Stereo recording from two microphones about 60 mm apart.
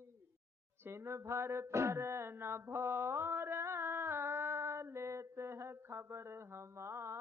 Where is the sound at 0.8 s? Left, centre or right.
Right.